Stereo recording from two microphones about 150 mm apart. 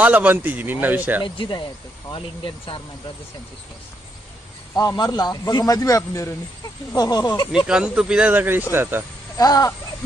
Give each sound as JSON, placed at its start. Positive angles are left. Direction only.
{"t": 0.0, "sound": "a man's voice", "side_deg": -10}
{"t": 1.2, "sound": "speech", "side_deg": 35}
{"t": 4.7, "sound": "a man's voice", "side_deg": 25}
{"t": 7.5, "sound": "a man's voice", "side_deg": -5}
{"t": 9.4, "sound": "a man's voice", "side_deg": 25}